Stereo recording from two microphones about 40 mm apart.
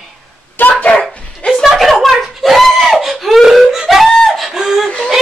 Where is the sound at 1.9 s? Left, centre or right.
Centre.